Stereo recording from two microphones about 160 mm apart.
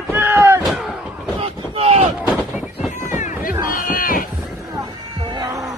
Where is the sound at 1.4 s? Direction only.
40° right (ahead or behind).